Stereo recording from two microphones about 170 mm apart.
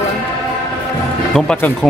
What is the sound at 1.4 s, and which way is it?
Speech, 5° left (ahead or behind).